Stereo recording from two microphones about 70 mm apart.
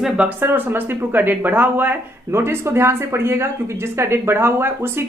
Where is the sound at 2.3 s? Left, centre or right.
Right.